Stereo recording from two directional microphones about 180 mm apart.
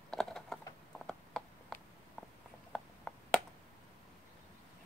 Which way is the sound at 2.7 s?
5° left (ahead or behind).